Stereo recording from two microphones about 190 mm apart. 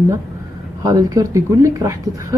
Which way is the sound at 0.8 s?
20° right (ahead or behind).